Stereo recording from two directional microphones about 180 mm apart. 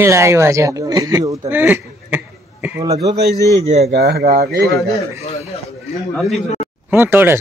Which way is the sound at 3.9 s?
60° right (ahead or behind).